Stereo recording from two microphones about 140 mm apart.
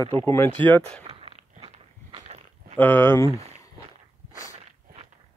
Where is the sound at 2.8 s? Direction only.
15° left (ahead or behind).